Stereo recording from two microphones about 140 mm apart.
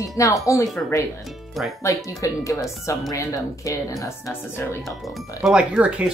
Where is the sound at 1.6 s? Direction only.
Centre (ahead or behind).